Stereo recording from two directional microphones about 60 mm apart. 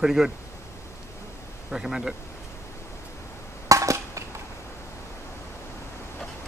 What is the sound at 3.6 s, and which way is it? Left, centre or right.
Cap gun, right.